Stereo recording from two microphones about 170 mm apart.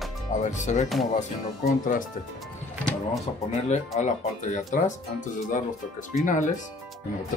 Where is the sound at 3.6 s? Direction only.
45° left (ahead or behind).